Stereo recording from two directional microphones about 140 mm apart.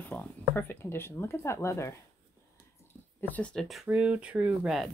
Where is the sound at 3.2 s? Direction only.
10° left (ahead or behind).